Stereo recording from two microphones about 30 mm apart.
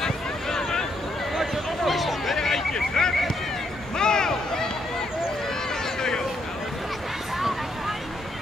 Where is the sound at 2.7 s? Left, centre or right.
Left.